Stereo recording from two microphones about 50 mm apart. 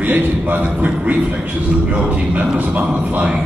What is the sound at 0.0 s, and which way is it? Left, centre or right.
Speech, right.